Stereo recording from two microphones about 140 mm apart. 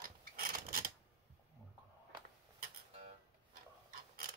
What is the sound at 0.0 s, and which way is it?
Filing, 90° right.